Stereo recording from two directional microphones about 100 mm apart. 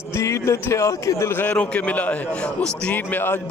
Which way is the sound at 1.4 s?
15° left (ahead or behind).